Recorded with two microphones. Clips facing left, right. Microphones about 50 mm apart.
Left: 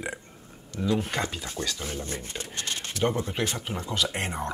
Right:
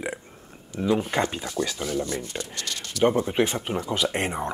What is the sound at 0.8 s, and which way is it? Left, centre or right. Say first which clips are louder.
Speech: right 4 dB; right.